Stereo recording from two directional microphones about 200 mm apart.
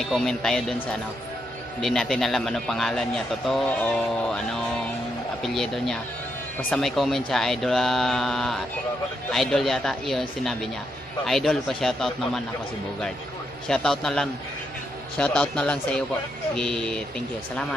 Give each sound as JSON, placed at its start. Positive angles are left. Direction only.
{"t": 0.0, "sound": "a man's voice", "side_deg": 0}
{"t": 13.7, "sound": "a man's voice", "side_deg": 5}